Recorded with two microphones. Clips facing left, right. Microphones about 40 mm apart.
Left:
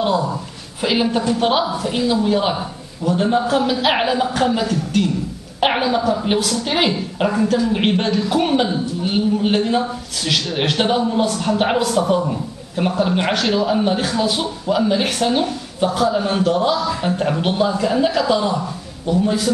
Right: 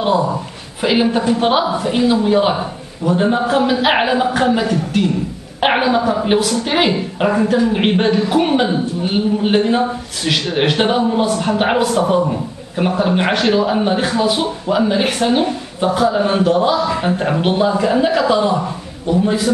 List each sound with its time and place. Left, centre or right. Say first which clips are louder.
0.0 s a man's voice: right 3 dB; right